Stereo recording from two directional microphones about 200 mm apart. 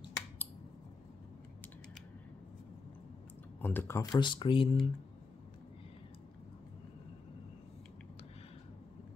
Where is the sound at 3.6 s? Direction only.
10° left (ahead or behind); by 4.7 s 25° left (ahead or behind).